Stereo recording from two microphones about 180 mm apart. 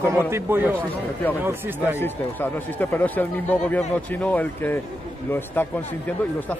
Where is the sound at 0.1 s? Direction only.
10° right (ahead or behind).